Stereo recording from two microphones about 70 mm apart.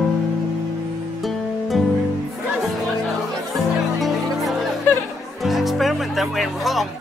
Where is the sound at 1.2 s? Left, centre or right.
Centre.